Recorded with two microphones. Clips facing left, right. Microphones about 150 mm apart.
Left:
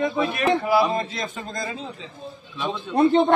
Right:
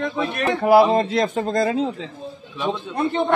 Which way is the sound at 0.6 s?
55° right (ahead or behind).